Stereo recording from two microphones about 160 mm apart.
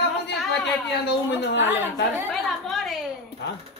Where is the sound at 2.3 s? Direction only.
Centre (ahead or behind).